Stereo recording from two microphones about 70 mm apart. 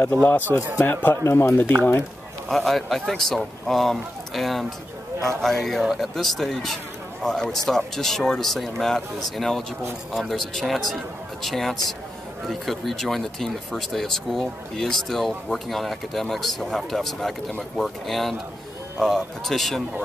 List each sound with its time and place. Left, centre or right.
0.2 s speech: left
1.1 s speech: left
2.5 s speech: centre